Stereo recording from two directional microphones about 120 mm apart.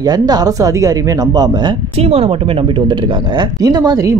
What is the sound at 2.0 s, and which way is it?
Speech, 60° right (ahead or behind).